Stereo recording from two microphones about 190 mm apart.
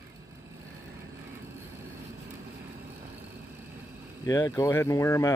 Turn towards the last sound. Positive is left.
turn(degrees=15)  # may be behind; listen again after turning